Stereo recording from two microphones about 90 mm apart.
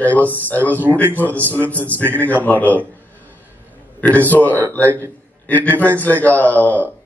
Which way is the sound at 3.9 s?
15° left (ahead or behind).